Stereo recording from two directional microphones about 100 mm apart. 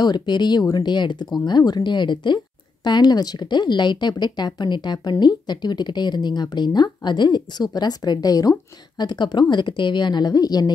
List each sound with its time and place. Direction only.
0.0 s speech: 45° left (ahead or behind)